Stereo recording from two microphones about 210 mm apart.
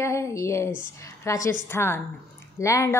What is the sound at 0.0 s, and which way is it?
A woman's voice, 15° left (ahead or behind).